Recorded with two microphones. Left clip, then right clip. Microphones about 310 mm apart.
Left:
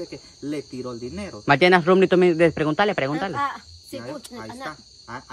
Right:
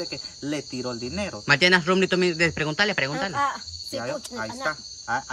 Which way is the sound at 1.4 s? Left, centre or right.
Centre.